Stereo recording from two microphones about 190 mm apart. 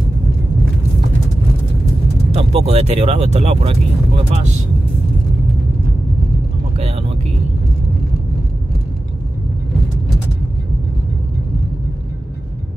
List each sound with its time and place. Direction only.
2.3 s speech: 30° right (ahead or behind)
6.8 s vehicle: 30° right (ahead or behind)